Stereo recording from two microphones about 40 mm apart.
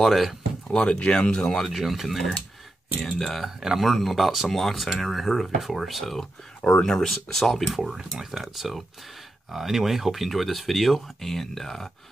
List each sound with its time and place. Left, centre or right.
0.0 s a sound: centre
0.7 s speech: left
1.1 s speech: left
1.6 s speech: centre
3.4 s speech: centre
3.8 s speech: centre
7.7 s speech: centre